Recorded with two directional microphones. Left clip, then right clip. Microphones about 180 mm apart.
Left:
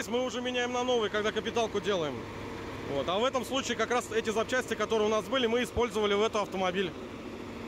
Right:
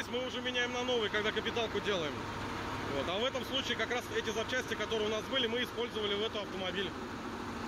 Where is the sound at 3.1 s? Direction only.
40° left (ahead or behind).